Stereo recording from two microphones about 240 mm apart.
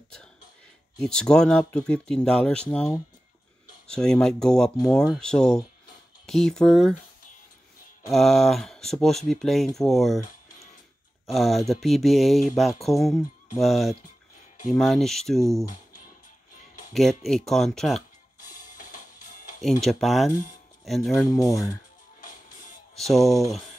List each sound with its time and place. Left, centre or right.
0.9 s speech: centre
8.1 s speech: centre
11.2 s speech: centre
16.9 s speech: centre
18.4 s music: left
19.6 s speech: centre
21.3 s speech: centre
22.2 s music: left
22.9 s speech: centre